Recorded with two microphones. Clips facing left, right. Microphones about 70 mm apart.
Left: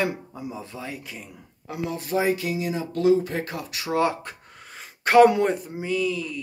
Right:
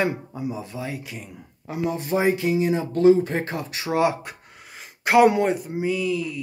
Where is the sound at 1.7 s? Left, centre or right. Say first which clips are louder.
Right 2 dB; right; by 6.4 s centre.